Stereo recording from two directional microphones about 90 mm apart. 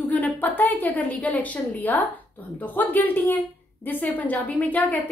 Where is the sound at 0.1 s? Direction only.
20° left (ahead or behind).